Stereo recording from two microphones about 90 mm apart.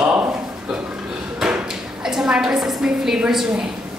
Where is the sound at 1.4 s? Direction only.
5° right (ahead or behind).